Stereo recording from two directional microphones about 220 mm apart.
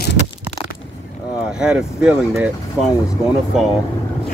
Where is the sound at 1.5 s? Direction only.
5° right (ahead or behind).